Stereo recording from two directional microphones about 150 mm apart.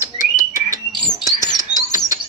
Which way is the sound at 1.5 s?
25° left (ahead or behind).